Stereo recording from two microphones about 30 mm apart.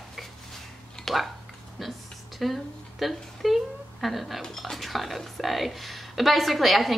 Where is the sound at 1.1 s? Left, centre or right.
Centre.